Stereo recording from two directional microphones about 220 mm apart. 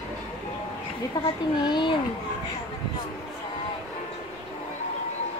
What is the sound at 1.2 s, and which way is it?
Speech, 15° left (ahead or behind).